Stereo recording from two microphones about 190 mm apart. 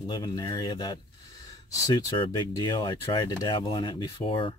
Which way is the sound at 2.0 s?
25° left (ahead or behind).